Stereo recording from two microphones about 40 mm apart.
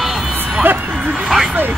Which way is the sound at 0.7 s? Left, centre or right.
Right.